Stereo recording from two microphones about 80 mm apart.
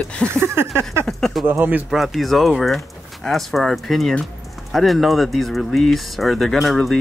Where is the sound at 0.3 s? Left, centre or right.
Right.